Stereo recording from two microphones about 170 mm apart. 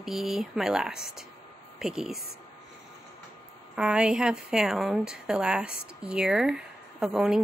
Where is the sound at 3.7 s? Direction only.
5° right (ahead or behind).